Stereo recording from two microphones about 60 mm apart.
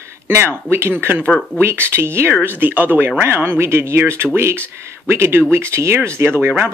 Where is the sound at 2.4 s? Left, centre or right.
Right.